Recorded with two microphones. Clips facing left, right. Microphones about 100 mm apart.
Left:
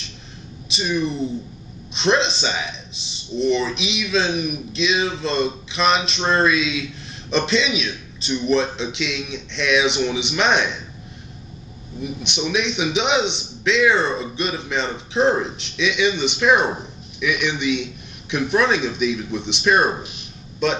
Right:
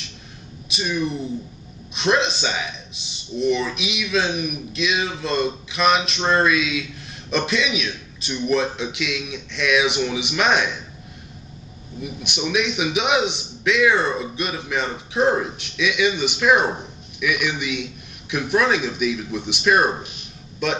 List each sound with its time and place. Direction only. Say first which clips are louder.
0.7 s a woman's voice: left 2 dB; 5° right (ahead or behind)
12.0 s a man's voice: left 2 dB; 5° right (ahead or behind)